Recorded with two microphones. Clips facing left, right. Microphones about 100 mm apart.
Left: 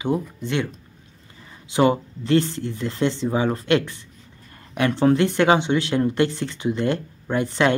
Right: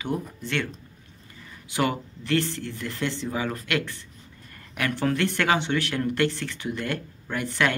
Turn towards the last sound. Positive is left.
turn(degrees=20)  # may be behind; listen again after turning